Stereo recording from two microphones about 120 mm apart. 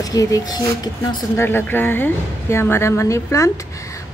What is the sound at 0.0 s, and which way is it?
Speech, 30° left (ahead or behind).